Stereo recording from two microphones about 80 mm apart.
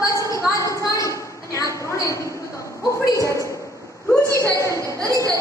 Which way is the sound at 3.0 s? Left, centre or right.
Left.